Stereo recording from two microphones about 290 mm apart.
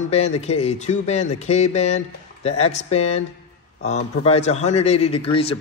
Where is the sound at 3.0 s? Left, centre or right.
Left.